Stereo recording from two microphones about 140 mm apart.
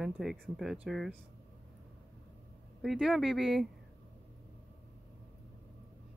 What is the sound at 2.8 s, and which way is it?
Speech, centre (ahead or behind).